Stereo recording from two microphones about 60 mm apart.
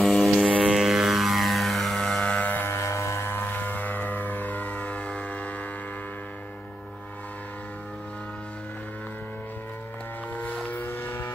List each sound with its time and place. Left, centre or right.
0.0 s vehicle: centre
0.5 s music: centre
2.2 s music: left
2.7 s vehicle: left
10.3 s boat: left
10.9 s vehicle: left